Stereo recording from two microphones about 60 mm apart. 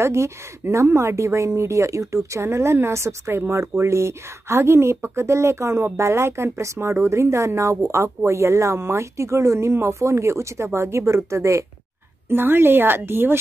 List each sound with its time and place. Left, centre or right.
0.0 s a woman's voice: right
12.3 s speech: right